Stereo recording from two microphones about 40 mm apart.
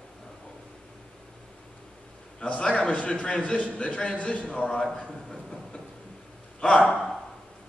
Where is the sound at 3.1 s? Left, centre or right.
Left.